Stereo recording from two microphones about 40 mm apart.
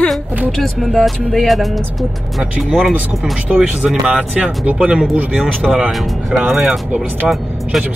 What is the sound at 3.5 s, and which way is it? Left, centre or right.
Speech, right.